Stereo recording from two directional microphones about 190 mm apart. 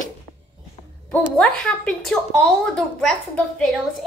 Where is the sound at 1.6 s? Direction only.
5° left (ahead or behind).